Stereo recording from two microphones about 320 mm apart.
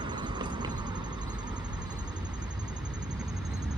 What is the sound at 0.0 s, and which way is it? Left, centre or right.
Vehicle, centre.